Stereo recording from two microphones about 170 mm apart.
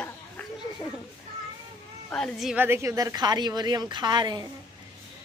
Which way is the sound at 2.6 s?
15° right (ahead or behind).